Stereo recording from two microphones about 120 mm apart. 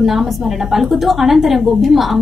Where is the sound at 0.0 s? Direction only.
Centre (ahead or behind).